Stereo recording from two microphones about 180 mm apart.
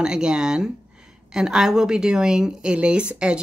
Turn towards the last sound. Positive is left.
turn(degrees=-5)  # may be behind; listen again after turning